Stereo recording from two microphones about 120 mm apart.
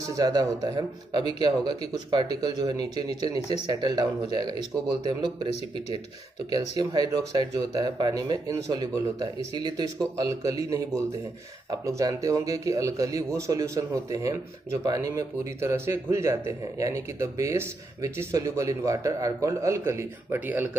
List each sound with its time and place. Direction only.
0.0 s speech: 30° right (ahead or behind)
6.5 s a man's voice: 35° right (ahead or behind); by 20.7 s 15° right (ahead or behind)